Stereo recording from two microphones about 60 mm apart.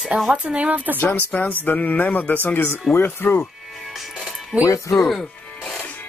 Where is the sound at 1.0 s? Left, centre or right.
Left.